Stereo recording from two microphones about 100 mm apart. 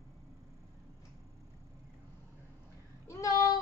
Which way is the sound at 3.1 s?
30° left (ahead or behind).